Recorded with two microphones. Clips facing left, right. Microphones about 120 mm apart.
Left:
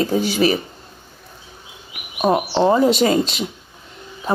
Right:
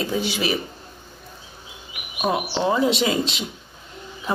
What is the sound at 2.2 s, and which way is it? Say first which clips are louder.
Speech: left 6 dB; 40° left (ahead or behind).